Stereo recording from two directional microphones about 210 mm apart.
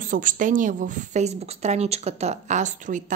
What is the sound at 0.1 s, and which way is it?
A woman's voice, 40° right (ahead or behind).